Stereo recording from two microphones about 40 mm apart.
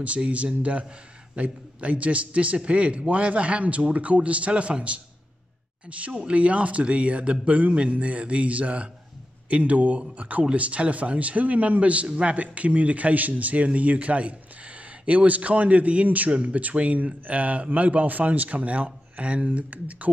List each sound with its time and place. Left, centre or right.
0.0 s a man's voice: right
5.9 s a man's voice: right